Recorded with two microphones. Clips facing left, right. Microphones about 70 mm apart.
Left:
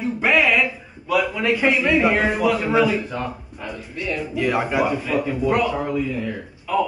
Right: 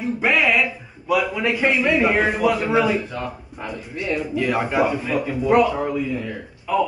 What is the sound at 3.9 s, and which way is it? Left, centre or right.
Speech, right.